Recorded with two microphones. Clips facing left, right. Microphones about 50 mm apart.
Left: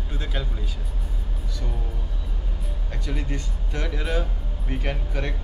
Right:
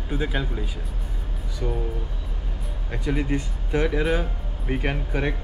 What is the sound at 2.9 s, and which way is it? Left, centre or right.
Speech, centre.